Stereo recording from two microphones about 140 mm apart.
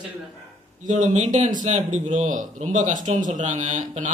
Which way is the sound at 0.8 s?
60° right (ahead or behind).